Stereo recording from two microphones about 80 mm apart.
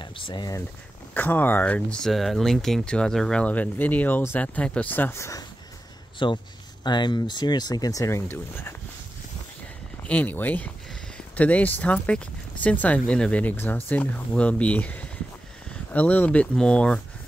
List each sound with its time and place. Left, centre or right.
0.0 s speech: left
1.1 s speech: left
6.1 s speech: left
8.1 s speech: left
10.0 s speech: centre